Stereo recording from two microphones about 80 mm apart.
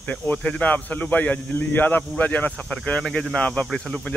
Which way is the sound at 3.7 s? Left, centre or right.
Centre.